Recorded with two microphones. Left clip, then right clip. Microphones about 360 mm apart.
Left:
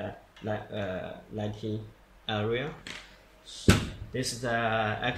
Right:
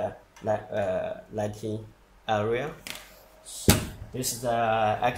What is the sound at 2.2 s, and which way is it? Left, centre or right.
Speech, centre.